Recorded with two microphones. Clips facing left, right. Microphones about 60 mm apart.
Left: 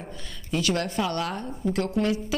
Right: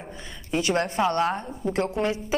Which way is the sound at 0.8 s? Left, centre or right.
Right.